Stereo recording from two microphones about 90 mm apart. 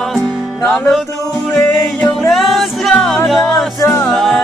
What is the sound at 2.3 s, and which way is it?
Music, centre (ahead or behind).